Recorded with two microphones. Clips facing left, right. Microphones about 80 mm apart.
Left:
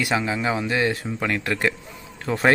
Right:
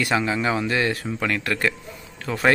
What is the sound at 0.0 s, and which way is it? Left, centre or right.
A man's voice, centre.